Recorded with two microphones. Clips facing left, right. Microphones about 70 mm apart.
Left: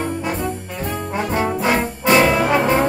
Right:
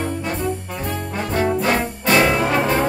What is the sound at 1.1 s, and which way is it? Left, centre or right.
Brass instrument, centre.